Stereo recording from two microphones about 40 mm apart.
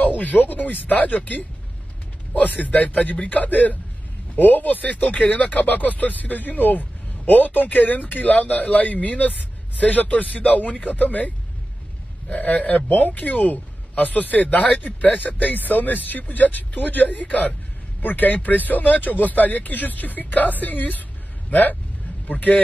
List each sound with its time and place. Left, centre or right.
0.0 s speech: left